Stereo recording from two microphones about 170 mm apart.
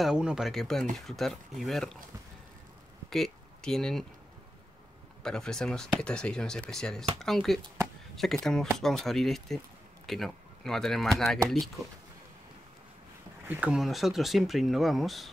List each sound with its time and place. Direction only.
0.0 s speech: 5° right (ahead or behind)
3.1 s speech: centre (ahead or behind)
5.2 s speech: 5° left (ahead or behind)
13.5 s speech: 10° right (ahead or behind)